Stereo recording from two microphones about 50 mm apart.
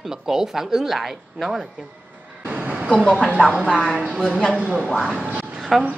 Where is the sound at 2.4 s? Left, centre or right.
Right.